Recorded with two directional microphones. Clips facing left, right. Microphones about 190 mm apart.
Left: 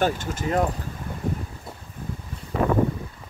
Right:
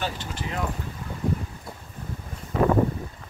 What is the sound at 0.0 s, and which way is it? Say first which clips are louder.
Speech: left 7 dB; 45° left (ahead or behind).